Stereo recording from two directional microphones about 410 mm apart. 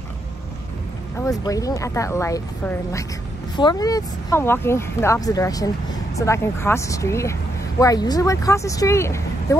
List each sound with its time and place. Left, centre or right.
1.2 s speech: centre